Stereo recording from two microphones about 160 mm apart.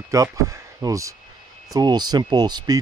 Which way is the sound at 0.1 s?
20° right (ahead or behind).